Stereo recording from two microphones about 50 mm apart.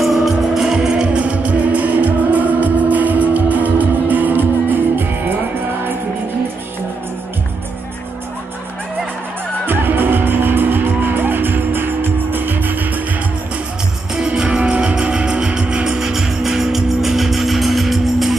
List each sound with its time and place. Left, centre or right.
0.0 s music: centre
1.0 s music: right
9.7 s music: right
14.1 s music: centre